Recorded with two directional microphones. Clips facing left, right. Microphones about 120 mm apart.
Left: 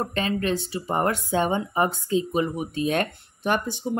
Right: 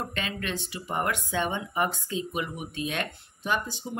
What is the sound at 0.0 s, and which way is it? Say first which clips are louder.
Speech: left 8 dB; 35° left (ahead or behind).